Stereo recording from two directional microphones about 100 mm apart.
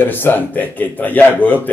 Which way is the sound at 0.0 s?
20° left (ahead or behind).